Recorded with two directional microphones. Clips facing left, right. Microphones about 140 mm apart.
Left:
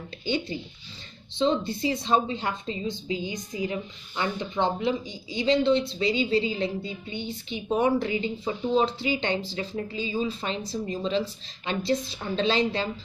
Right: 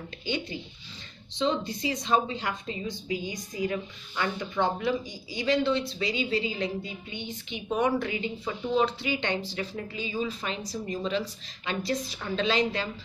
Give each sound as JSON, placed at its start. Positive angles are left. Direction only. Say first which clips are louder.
{"t": 0.2, "sound": "speech", "louder": "left 4 dB", "side_deg": 30}